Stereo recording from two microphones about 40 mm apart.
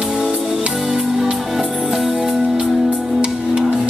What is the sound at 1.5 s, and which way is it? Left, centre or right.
Music, centre.